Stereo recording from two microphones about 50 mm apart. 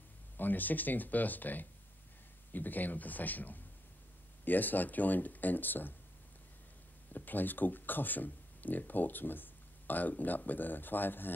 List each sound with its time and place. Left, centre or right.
0.4 s speech: left
7.1 s speech: left